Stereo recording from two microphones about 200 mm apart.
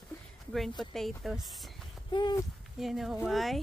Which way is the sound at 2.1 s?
20° left (ahead or behind).